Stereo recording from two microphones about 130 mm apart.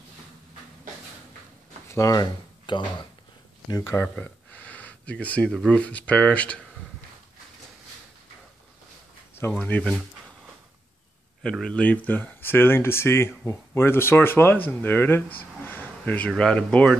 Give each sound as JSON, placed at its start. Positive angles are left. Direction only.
{"t": 1.9, "sound": "speech", "side_deg": 25}
{"t": 4.0, "sound": "speech", "side_deg": 10}
{"t": 9.6, "sound": "speech", "side_deg": 10}
{"t": 11.4, "sound": "speech", "side_deg": 5}